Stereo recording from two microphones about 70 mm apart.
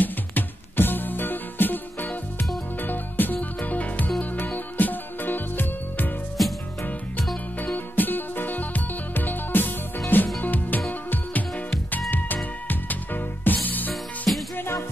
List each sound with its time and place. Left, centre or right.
0.0 s music: left
7.7 s music: left
12.6 s music: left
14.6 s music: left